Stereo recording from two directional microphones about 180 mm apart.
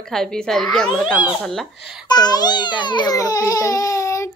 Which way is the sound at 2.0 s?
25° left (ahead or behind).